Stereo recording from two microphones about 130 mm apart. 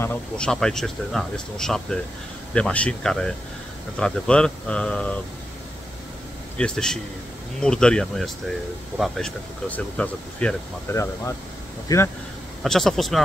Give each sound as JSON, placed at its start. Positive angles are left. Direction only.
{"t": 0.0, "sound": "speech", "side_deg": 10}
{"t": 6.6, "sound": "speech", "side_deg": 5}
{"t": 10.9, "sound": "speech", "side_deg": 20}
{"t": 12.6, "sound": "speech", "side_deg": 0}